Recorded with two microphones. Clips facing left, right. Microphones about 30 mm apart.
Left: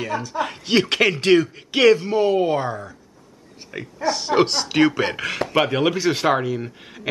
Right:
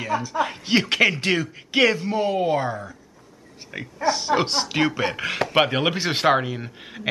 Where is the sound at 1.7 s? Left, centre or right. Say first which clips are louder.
Left 4 dB; centre.